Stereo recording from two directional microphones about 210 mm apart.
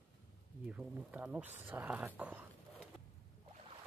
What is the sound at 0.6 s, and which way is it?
Speech, 5° right (ahead or behind).